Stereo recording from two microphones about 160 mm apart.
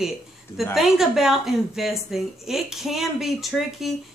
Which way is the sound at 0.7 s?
Centre (ahead or behind).